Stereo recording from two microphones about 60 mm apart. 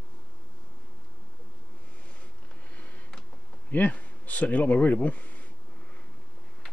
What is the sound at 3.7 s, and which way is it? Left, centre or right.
Speech, left.